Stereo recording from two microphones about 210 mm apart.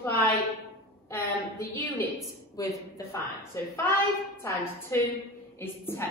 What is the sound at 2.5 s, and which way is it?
Speech, 15° left (ahead or behind).